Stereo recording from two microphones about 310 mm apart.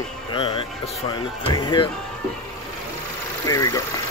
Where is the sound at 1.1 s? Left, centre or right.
Centre.